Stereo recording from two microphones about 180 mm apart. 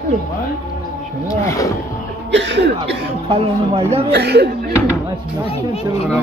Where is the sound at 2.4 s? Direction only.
75° right (ahead or behind).